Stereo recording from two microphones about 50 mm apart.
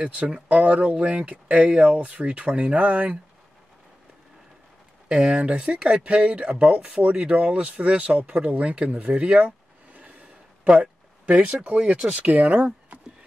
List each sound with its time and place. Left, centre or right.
0.0 s speech: right
5.0 s speech: right
10.6 s speech: right